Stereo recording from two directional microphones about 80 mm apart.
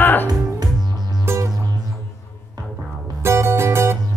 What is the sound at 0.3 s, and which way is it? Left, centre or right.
Music, right.